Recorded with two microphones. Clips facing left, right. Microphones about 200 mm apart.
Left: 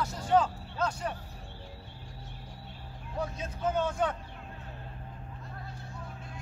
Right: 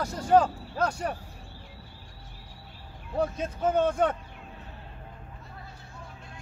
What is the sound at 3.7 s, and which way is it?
Speech, 55° right (ahead or behind).